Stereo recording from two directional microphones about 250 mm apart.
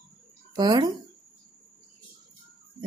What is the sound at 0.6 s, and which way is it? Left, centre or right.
Speech, centre.